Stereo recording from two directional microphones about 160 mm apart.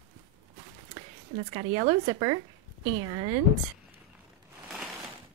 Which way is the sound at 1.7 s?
35° right (ahead or behind).